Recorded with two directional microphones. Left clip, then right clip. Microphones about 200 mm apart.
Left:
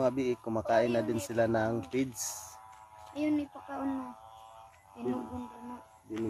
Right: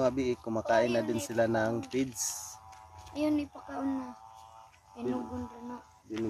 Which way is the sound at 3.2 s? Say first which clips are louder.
Right 1 dB; 45° right (ahead or behind).